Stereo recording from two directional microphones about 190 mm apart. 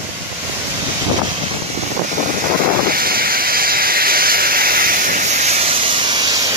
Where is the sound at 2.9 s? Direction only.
50° right (ahead or behind); by 5.8 s 35° right (ahead or behind).